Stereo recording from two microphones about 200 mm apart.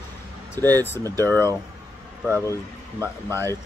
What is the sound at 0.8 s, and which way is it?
Speech, 10° left (ahead or behind).